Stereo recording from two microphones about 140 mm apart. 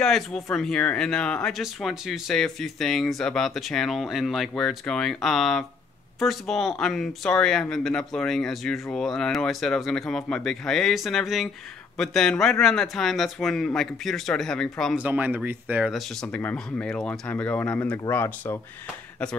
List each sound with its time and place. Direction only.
0.0 s speech: 5° left (ahead or behind)
15.0 s speech: 10° right (ahead or behind)
15.9 s speech: 5° left (ahead or behind)